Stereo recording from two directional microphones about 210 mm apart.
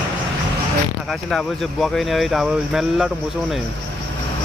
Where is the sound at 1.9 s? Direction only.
Centre (ahead or behind).